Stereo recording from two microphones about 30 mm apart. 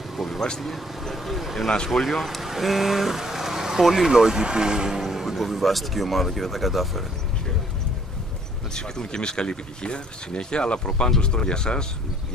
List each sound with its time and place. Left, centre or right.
0.1 s vehicle: centre
0.6 s speech: centre
2.2 s speech: centre
3.2 s vehicle: centre
3.8 s speech: centre
4.1 s speech: centre
5.0 s a sound: centre
5.4 s speech: centre
8.7 s speech: left